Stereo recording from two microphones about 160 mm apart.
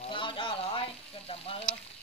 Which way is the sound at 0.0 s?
35° left (ahead or behind).